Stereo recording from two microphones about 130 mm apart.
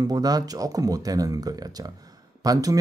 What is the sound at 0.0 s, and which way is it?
Speech, 30° right (ahead or behind).